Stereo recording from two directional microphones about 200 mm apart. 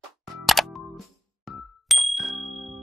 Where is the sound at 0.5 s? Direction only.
Centre (ahead or behind).